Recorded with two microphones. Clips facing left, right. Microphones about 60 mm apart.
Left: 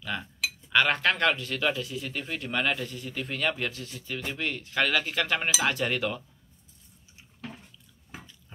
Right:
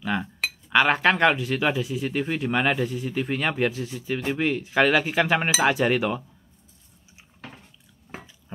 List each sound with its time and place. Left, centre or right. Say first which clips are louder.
0.0 s speech: right 6 dB; right